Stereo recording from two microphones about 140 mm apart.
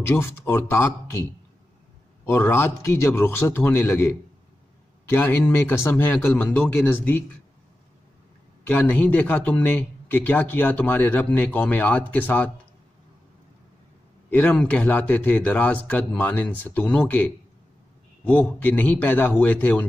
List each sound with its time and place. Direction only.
0.0 s speech: 20° left (ahead or behind)
2.2 s speech: 15° left (ahead or behind)
5.1 s speech: 15° left (ahead or behind)
8.6 s speech: 10° left (ahead or behind)
14.3 s speech: 10° left (ahead or behind)